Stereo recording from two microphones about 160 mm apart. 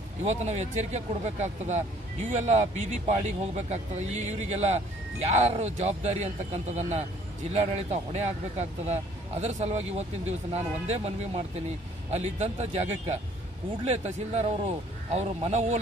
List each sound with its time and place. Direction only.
0.2 s speech: 45° right (ahead or behind)